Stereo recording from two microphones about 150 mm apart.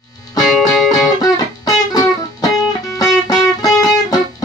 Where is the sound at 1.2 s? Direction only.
25° left (ahead or behind).